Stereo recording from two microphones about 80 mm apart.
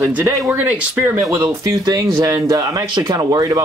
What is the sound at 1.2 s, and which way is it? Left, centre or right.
Speech, right.